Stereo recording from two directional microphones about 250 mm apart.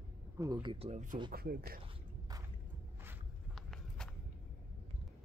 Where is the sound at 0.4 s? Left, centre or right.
Centre; by 1.8 s right.